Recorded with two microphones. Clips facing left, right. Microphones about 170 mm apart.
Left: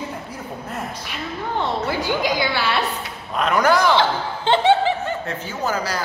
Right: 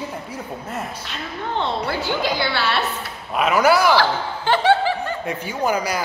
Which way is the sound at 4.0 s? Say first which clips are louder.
Even; 25° left (ahead or behind).